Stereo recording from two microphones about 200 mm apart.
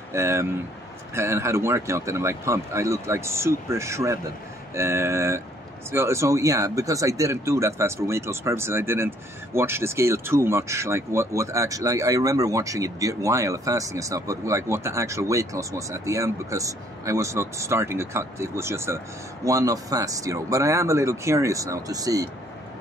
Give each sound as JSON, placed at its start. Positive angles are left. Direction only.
{"t": 0.1, "sound": "speech", "side_deg": -15}